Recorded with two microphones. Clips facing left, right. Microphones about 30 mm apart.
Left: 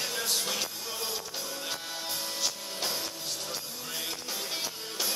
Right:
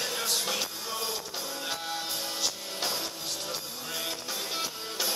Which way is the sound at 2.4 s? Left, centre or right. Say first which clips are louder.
Right 1 dB; centre.